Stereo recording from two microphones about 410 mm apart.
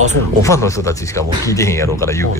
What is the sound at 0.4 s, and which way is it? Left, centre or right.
Speech, centre.